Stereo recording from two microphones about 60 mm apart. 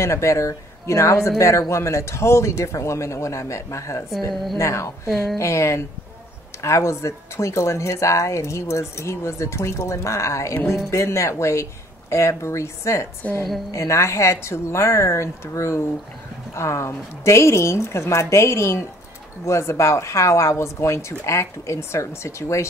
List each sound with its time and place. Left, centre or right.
0.0 s speech: left
4.3 s a woman's voice: centre
4.6 s speech: left